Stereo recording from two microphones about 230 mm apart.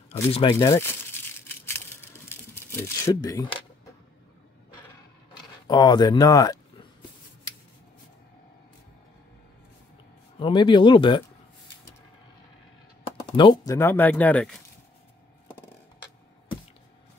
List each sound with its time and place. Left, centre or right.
0.3 s speech: left
2.2 s a sound: centre
5.7 s speech: centre
10.4 s speech: left
13.4 s speech: centre
13.7 s speech: centre